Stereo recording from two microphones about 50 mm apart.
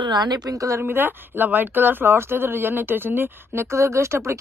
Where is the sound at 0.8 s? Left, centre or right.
Right.